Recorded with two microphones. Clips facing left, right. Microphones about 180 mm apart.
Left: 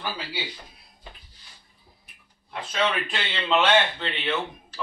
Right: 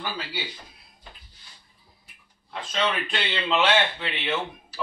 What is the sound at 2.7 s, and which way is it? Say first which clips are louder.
A man's voice: left 1 dB; centre (ahead or behind).